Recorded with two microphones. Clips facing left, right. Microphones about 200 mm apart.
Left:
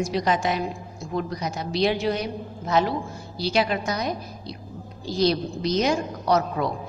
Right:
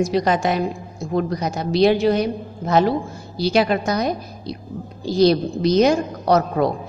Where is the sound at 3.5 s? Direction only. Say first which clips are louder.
Right 5 dB; 55° right (ahead or behind).